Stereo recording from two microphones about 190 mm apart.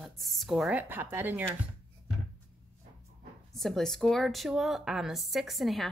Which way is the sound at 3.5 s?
Centre (ahead or behind).